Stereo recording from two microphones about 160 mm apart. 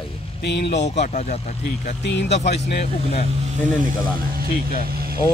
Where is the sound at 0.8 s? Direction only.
45° left (ahead or behind).